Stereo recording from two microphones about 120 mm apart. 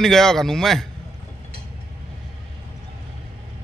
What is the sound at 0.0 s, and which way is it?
Speech, 5° left (ahead or behind).